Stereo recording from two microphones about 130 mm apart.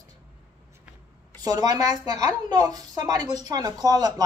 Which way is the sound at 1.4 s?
30° right (ahead or behind).